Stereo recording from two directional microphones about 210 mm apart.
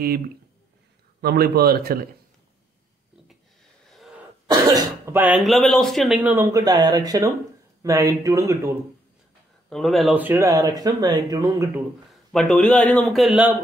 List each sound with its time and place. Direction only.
1.2 s speech: 45° right (ahead or behind)
4.5 s speech: 20° right (ahead or behind)
9.7 s speech: centre (ahead or behind); by 11.8 s 15° right (ahead or behind)
12.1 s a man's voice: centre (ahead or behind)